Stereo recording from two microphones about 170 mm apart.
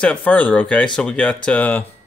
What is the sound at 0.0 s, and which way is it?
Speech, 10° left (ahead or behind).